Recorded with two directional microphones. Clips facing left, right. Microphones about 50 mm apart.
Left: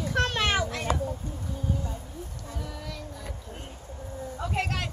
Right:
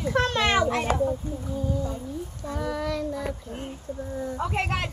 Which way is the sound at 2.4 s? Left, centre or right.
Right.